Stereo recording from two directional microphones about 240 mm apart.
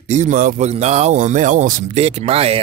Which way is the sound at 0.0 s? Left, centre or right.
Right.